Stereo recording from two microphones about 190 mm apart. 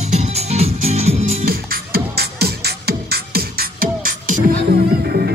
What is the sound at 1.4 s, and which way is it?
Music, 55° right (ahead or behind).